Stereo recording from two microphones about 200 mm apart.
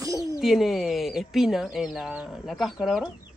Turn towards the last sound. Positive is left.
turn(degrees=0)  # may be behind; listen again after turning